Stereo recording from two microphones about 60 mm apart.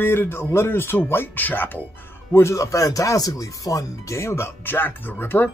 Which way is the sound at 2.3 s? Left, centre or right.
Left.